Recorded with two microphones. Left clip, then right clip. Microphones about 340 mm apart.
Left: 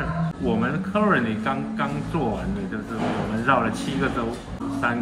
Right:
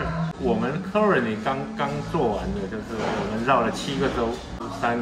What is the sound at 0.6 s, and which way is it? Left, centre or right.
Speech, centre.